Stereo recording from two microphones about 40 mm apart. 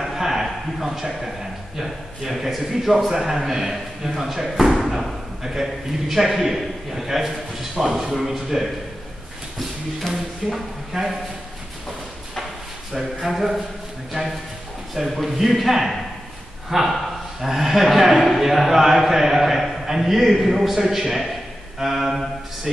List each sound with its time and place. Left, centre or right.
0.0 s a sound: centre
1.8 s a man's voice: centre
10.0 s a man's voice: centre
12.9 s speech: centre
14.2 s a man's voice: right
15.0 s a man's voice: centre